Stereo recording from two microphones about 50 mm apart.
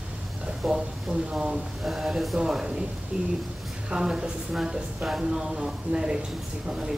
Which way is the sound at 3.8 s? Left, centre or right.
Centre.